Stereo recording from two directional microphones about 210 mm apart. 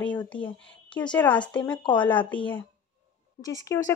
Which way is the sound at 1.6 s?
20° left (ahead or behind).